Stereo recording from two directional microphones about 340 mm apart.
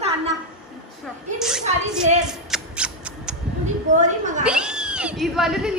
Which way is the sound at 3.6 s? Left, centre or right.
Right.